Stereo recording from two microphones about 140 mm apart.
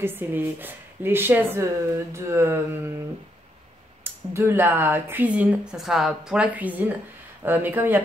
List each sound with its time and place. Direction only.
0.0 s speech: 15° right (ahead or behind)
2.1 s mantra: 20° right (ahead or behind)
4.0 s speech: 20° right (ahead or behind)